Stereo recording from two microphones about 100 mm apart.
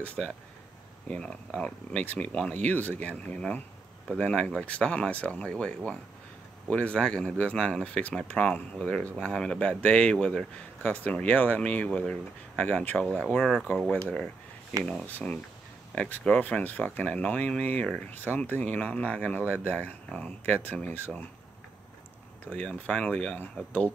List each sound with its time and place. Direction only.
0.0 s speech: 15° left (ahead or behind)
13.4 s speech: centre (ahead or behind)
15.0 s speech: 15° left (ahead or behind)
22.6 s speech: 10° left (ahead or behind)